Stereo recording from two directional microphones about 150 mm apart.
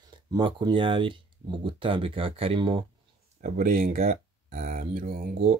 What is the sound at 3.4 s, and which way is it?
Speech, 65° right (ahead or behind).